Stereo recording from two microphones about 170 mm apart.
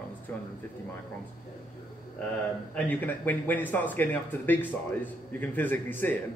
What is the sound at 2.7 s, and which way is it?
A man's voice, 10° left (ahead or behind).